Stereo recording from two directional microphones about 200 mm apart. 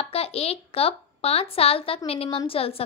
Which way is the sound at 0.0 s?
30° left (ahead or behind).